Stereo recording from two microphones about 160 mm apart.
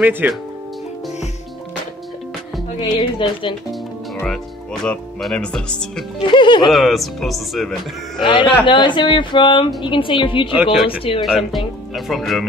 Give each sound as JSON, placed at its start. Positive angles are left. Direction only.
{"t": 0.0, "sound": "speech", "side_deg": -10}
{"t": 2.9, "sound": "speech", "side_deg": 30}
{"t": 4.8, "sound": "speech", "side_deg": 5}
{"t": 6.2, "sound": "speech", "side_deg": 30}
{"t": 6.7, "sound": "speech", "side_deg": 0}
{"t": 8.2, "sound": "speech", "side_deg": 30}
{"t": 10.6, "sound": "speech", "side_deg": -5}